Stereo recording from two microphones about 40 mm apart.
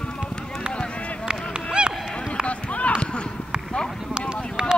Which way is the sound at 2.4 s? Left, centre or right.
Left.